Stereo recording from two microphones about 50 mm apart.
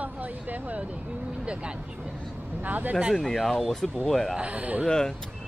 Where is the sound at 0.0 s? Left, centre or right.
Right.